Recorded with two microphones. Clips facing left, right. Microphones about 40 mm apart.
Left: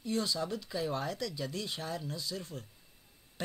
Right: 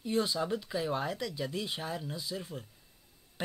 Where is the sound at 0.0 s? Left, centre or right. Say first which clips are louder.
Right 3 dB; right.